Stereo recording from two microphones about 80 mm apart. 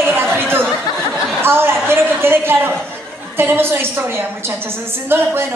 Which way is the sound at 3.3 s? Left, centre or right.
Right.